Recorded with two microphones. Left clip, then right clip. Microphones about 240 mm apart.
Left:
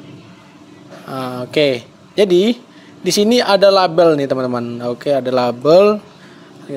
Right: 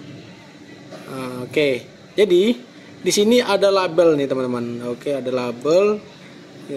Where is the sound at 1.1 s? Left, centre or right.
Left.